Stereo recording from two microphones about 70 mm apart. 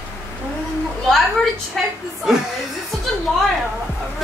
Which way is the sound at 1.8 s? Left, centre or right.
Centre.